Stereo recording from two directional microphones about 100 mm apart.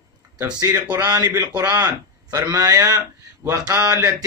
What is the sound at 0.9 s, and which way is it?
Speech, 35° right (ahead or behind).